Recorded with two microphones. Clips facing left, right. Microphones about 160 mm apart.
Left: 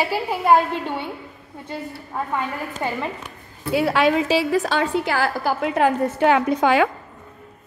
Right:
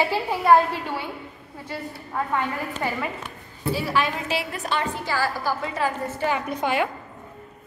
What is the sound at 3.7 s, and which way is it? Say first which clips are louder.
A woman's voice: left 7 dB; 70° left (ahead or behind).